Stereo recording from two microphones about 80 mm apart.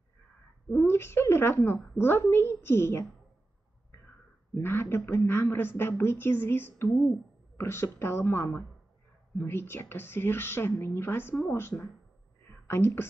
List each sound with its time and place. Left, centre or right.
0.7 s a woman's voice: left
4.6 s a woman's voice: left
12.6 s speech: left